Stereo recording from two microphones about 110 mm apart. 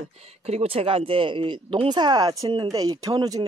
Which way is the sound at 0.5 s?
65° right (ahead or behind).